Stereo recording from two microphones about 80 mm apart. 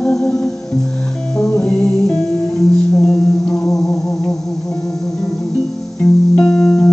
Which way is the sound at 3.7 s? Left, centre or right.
Centre.